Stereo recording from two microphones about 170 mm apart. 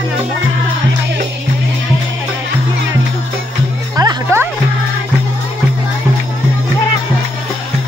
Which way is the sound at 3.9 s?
20° right (ahead or behind).